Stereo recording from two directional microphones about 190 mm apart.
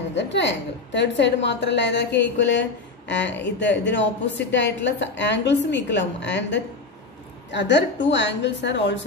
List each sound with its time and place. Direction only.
0.1 s a woman's voice: 70° left (ahead or behind)